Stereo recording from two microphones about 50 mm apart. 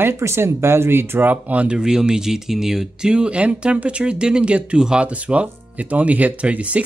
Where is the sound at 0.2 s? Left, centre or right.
Right.